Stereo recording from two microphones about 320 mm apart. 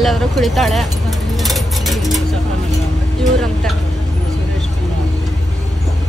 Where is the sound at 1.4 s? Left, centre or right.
Centre.